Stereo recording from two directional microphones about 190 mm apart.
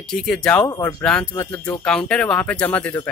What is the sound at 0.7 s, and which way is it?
Speech, 15° left (ahead or behind).